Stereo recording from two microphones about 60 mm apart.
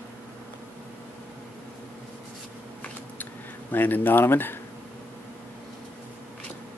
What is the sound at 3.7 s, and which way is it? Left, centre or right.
Speech, left.